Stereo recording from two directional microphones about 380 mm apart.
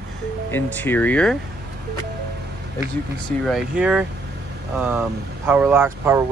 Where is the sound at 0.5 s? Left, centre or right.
Centre.